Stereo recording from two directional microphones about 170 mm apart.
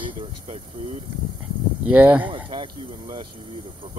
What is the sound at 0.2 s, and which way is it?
Speech, 40° right (ahead or behind).